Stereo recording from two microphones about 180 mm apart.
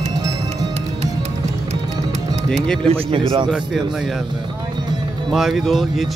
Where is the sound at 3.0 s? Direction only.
30° right (ahead or behind).